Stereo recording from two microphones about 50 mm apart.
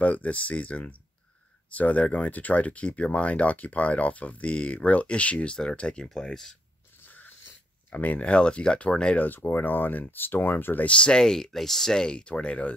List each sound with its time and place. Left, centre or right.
0.0 s speech: left; by 6.5 s centre
7.0 s a sound: left
7.9 s speech: left
9.2 s speech: left
10.9 s speech: centre